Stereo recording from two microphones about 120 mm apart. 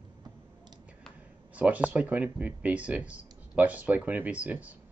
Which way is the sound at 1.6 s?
10° right (ahead or behind).